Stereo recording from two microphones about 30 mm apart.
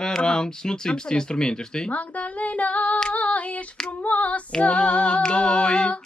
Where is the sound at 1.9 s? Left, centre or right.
Left.